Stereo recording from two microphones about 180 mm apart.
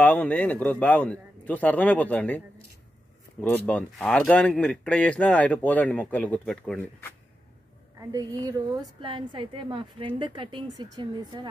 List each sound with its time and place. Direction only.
0.0 s speech: 10° left (ahead or behind)
8.0 s a woman's voice: 20° right (ahead or behind)